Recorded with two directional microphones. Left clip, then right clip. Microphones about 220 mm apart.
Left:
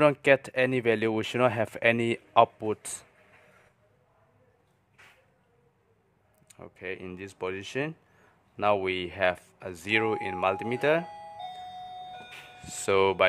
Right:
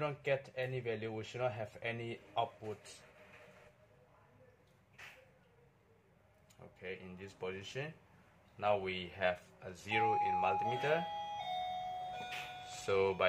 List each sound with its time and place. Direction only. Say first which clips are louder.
0.0 s speech: left 15 dB; 50° left (ahead or behind)
6.5 s speech: left 9 dB; 50° left (ahead or behind)
12.8 s speech: left 10 dB; 45° left (ahead or behind)